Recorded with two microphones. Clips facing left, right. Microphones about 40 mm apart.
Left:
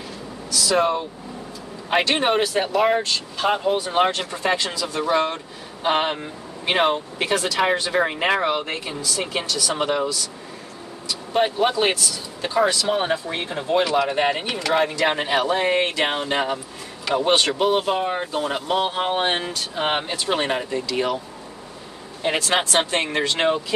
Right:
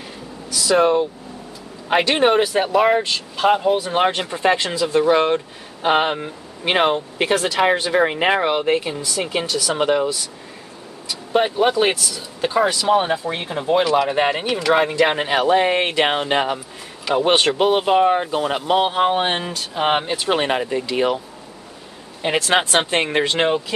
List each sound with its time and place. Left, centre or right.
0.5 s speech: centre
11.1 s speech: centre
14.7 s speech: centre
19.1 s speech: centre
22.2 s speech: centre